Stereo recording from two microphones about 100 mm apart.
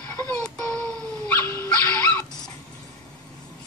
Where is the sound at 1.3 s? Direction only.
25° left (ahead or behind).